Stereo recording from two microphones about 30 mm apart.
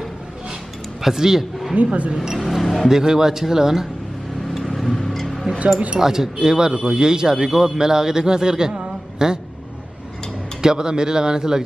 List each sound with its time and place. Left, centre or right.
1.0 s a man's voice: centre
1.8 s speech: right
2.3 s a sound: centre
2.6 s a sound: centre
2.9 s a man's voice: centre
4.6 s tick-tock: centre
5.9 s speech: centre
10.6 s speech: right